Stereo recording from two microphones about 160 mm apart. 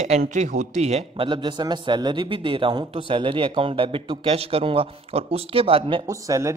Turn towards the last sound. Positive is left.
turn(degrees=-20)  # may be behind; listen again after turning